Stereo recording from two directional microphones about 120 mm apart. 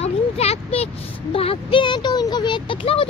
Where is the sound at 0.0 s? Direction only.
60° left (ahead or behind).